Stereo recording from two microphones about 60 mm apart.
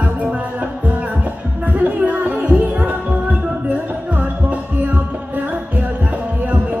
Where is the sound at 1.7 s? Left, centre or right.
Right.